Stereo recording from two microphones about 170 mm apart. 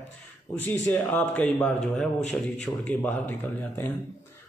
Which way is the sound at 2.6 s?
10° left (ahead or behind).